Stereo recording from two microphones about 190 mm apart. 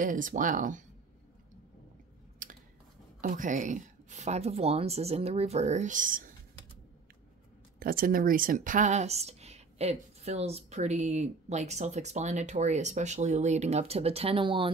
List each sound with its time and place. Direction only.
0.0 s speech: 45° right (ahead or behind)
2.4 s a sound: 45° right (ahead or behind)
3.2 s speech: 45° right (ahead or behind)
7.8 s speech: 50° right (ahead or behind); by 14.7 s 25° right (ahead or behind)